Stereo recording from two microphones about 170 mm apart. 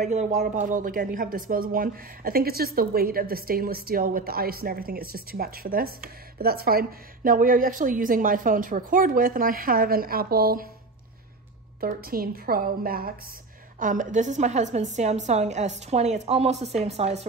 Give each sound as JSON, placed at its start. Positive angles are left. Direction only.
{"t": 0.0, "sound": "speech", "side_deg": -45}
{"t": 12.0, "sound": "speech", "side_deg": -60}
{"t": 13.7, "sound": "a woman's voice", "side_deg": -50}